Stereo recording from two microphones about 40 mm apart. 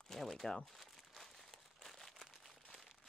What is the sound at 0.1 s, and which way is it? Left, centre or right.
Crumpling, centre.